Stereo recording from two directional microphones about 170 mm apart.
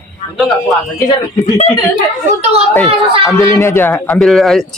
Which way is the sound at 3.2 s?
15° left (ahead or behind).